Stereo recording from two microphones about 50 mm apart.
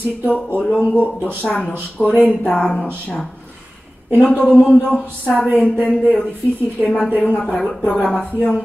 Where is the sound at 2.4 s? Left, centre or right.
Left.